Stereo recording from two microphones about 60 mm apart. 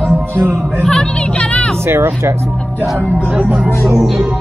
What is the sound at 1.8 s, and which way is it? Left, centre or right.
Speech, right.